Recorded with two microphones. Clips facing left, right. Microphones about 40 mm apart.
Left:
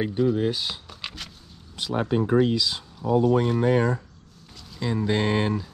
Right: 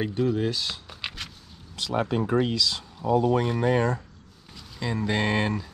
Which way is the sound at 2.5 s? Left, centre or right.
Left.